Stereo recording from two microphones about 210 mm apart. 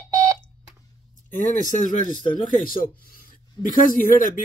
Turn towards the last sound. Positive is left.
turn(degrees=40)  # may be behind; listen again after turning